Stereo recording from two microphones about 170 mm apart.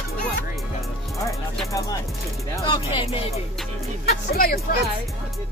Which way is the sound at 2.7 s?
30° left (ahead or behind).